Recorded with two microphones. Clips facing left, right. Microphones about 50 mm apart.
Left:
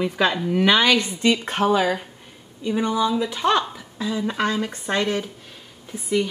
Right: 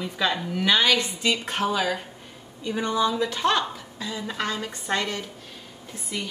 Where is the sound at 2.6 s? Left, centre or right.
Centre.